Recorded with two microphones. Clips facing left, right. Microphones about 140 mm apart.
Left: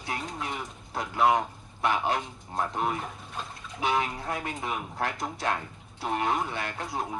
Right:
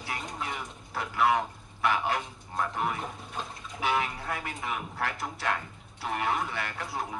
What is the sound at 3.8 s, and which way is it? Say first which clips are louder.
Speech: left 1 dB; 30° left (ahead or behind).